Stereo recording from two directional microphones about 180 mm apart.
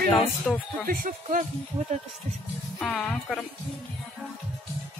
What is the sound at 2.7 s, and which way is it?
Speech, 5° left (ahead or behind).